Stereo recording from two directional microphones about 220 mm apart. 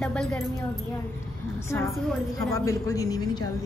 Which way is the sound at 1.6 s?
10° left (ahead or behind).